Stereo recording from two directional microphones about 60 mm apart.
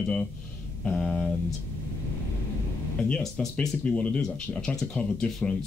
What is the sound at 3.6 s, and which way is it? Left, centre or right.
Speech, centre.